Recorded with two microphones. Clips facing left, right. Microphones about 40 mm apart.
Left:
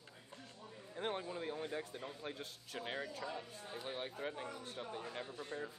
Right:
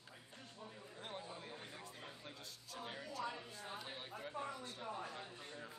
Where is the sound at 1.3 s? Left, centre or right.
Left.